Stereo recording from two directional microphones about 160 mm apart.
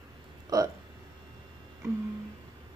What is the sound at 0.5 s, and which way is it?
Speech, 20° right (ahead or behind).